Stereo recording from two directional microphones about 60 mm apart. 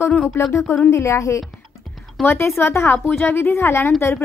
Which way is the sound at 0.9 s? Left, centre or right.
Left.